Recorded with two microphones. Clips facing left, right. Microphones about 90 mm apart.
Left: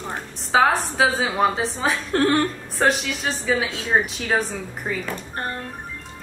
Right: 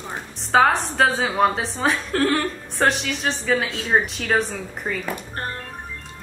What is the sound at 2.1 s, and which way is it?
Speech, 20° left (ahead or behind).